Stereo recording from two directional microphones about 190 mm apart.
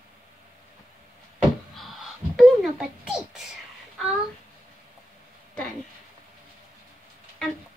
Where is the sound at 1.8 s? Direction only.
Centre (ahead or behind).